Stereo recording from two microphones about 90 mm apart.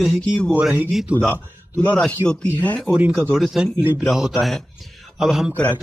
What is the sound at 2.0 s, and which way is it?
Speech, 10° left (ahead or behind).